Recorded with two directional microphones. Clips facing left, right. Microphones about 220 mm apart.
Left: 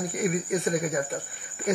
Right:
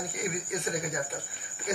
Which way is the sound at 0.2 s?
50° left (ahead or behind).